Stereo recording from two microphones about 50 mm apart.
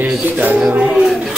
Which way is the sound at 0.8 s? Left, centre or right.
Centre.